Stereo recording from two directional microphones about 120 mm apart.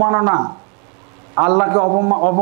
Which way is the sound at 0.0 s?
25° right (ahead or behind).